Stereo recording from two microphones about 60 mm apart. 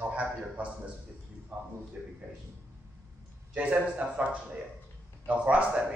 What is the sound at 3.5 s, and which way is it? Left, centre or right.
A man's voice, right.